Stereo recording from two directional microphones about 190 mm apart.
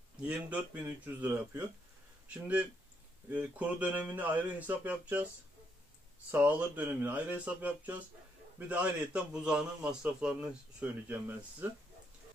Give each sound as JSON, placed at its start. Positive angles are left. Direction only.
{"t": 0.2, "sound": "a man's voice", "side_deg": -5}
{"t": 6.3, "sound": "a man's voice", "side_deg": -10}